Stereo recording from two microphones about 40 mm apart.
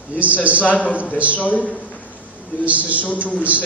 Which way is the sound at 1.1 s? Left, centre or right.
Right.